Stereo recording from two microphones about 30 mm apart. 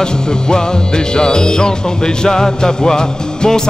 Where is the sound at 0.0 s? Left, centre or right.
Left.